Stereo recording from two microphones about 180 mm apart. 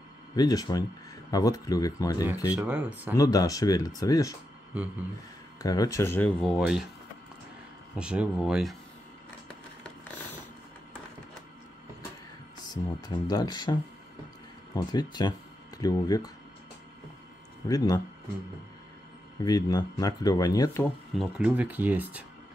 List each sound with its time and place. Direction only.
0.4 s speech: 20° left (ahead or behind)
2.5 s speech: 10° right (ahead or behind)
3.2 s speech: 20° left (ahead or behind)
5.6 s speech: 20° left (ahead or behind)
6.4 s speech: centre (ahead or behind)
7.9 s speech: 5° right (ahead or behind)
13.0 s speech: 25° left (ahead or behind)
17.6 s speech: 20° left (ahead or behind)
19.4 s speech: 20° left (ahead or behind)
21.1 s speech: 5° right (ahead or behind)